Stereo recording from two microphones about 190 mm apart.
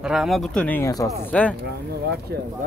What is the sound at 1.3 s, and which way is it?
Speech, 5° left (ahead or behind).